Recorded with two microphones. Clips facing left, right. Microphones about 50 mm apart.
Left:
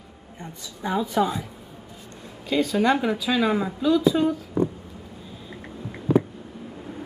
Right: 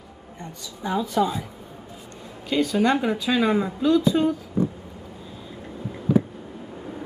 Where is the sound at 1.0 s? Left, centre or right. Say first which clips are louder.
Right 1 dB; centre.